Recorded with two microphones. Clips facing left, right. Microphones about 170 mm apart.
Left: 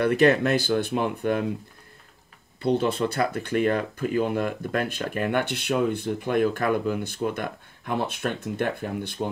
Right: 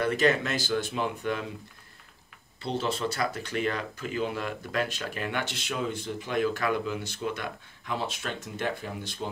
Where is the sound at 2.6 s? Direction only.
55° left (ahead or behind).